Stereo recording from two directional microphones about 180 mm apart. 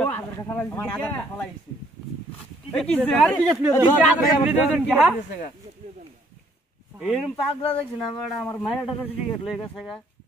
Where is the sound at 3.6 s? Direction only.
10° right (ahead or behind).